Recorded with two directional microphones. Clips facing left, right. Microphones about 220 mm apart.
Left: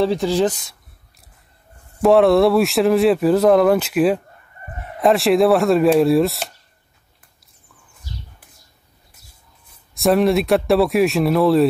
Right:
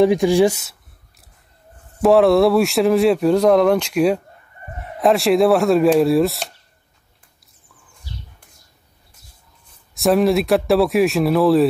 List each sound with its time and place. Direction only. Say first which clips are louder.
0.0 s speech: right 4 dB; 15° right (ahead or behind)
2.0 s speech: even; centre (ahead or behind)
8.1 s bird: left 1 dB; 45° left (ahead or behind)
9.7 s speech: even; centre (ahead or behind)